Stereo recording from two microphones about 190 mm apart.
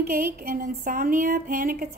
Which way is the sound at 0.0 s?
50° right (ahead or behind).